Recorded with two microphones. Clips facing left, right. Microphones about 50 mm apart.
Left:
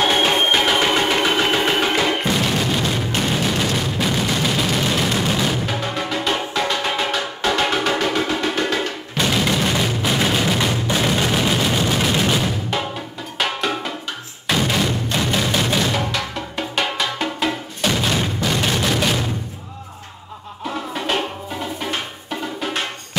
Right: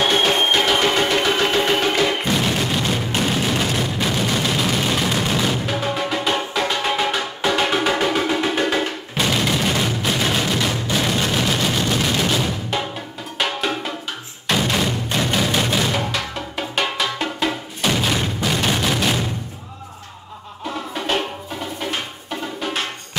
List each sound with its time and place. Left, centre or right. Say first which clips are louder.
0.0 s a sound: left 1 dB; centre
10.1 s music: left 3 dB; centre
20.6 s music: left 1 dB; centre